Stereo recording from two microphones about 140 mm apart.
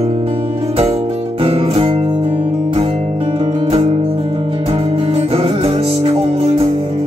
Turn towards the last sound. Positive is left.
turn(degrees=-45)  # may be behind; listen again after turning